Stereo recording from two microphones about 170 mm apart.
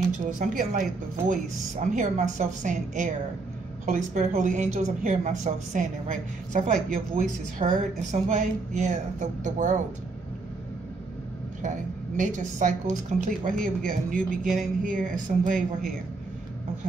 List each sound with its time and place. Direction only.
0.4 s a woman's voice: 50° right (ahead or behind)
11.6 s a woman's voice: 45° right (ahead or behind)
14.4 s speech: centre (ahead or behind)
14.8 s a woman's voice: 50° right (ahead or behind)